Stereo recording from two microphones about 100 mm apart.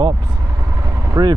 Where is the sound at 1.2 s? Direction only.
30° right (ahead or behind).